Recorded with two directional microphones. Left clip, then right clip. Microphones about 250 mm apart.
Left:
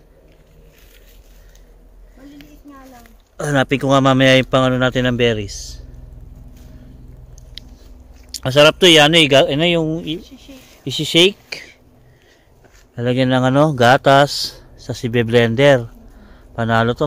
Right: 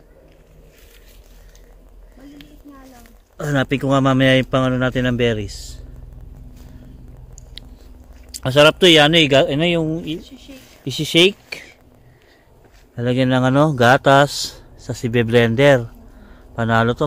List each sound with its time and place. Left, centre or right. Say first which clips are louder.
2.7 s speech: left 2 dB; centre
8.4 s speech: left 1 dB; centre
10.2 s speech: even; centre
10.7 s speech: left 2 dB; centre
12.9 s speech: left 1 dB; centre